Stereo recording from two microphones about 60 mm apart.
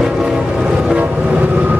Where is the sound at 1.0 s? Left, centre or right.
Right.